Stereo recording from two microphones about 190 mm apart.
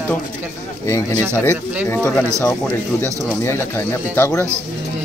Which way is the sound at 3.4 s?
15° left (ahead or behind).